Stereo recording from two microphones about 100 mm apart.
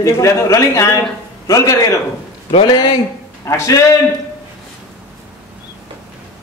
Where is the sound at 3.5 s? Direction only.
30° left (ahead or behind).